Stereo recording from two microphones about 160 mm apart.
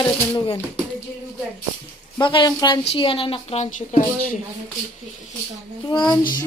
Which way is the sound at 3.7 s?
50° left (ahead or behind).